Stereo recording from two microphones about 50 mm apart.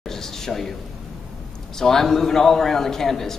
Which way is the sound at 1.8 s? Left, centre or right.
Centre.